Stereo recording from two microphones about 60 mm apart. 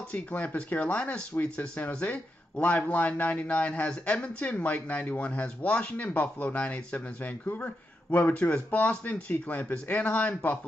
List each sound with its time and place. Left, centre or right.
0.1 s speech: left